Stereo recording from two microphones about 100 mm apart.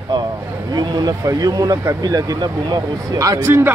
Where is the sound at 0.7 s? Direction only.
45° right (ahead or behind).